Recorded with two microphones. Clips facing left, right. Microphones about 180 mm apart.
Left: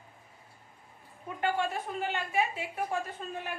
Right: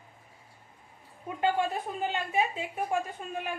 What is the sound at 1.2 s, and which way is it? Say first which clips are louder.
A woman's voice: right 3 dB; 20° right (ahead or behind).